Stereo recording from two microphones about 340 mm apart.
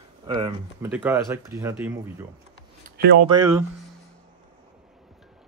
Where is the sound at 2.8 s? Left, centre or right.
Right.